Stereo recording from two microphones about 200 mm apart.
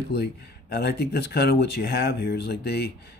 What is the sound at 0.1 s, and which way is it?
Speech, 55° left (ahead or behind).